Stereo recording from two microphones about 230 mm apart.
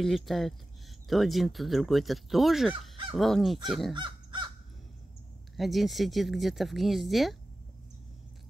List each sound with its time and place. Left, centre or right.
0.0 s speech: centre
3.9 s crow: centre
5.6 s speech: centre